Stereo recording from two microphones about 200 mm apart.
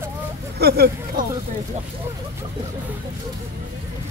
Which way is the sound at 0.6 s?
55° right (ahead or behind).